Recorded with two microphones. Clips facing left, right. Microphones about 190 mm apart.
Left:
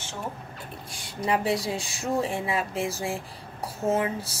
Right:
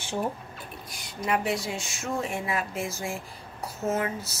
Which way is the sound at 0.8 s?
30° left (ahead or behind).